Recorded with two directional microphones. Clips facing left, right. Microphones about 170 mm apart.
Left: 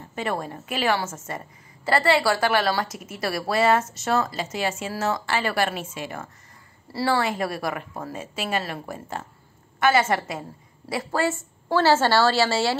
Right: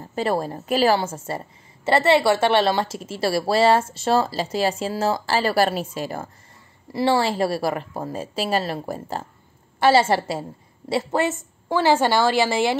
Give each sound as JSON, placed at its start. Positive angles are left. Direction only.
{"t": 0.0, "sound": "a woman's voice", "side_deg": -35}
{"t": 6.9, "sound": "a woman's voice", "side_deg": -20}